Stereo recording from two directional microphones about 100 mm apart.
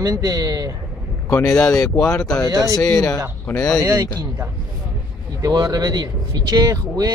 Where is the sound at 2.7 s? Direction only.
30° left (ahead or behind).